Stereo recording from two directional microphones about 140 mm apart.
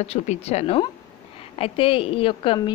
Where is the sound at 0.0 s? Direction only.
45° left (ahead or behind).